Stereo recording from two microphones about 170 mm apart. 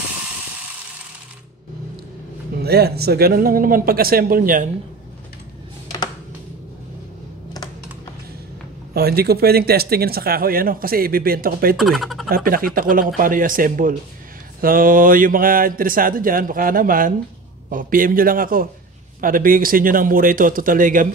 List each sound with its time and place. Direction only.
2.6 s speech: 70° right (ahead or behind)
8.9 s speech: 65° right (ahead or behind)
11.7 s speech: centre (ahead or behind)
12.3 s speech: 60° right (ahead or behind)